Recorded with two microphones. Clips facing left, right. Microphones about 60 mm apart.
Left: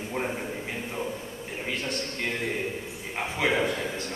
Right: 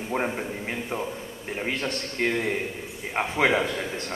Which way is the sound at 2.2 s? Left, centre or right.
Right.